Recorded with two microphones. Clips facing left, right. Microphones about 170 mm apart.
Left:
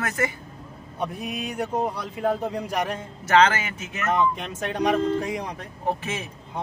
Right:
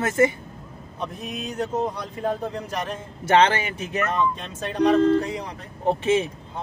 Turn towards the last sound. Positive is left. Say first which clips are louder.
# right 11 dB
turn(degrees=-30)  # may be behind; listen again after turning